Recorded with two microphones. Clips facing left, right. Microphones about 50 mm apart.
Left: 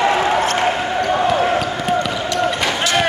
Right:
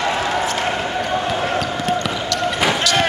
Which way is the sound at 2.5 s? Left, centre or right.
Centre.